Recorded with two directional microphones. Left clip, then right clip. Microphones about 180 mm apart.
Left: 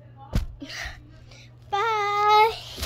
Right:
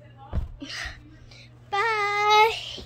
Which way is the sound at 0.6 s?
5° right (ahead or behind).